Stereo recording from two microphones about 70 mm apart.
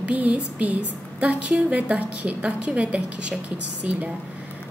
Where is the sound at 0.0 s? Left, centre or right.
Right.